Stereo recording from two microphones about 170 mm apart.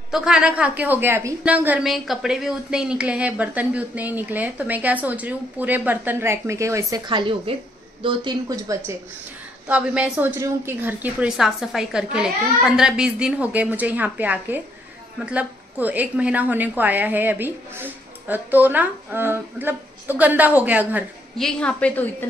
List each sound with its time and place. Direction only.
0.1 s a woman's voice: 5° right (ahead or behind); by 8.9 s 20° right (ahead or behind)
9.7 s a woman's voice: 5° right (ahead or behind)
21.4 s a woman's voice: 5° left (ahead or behind)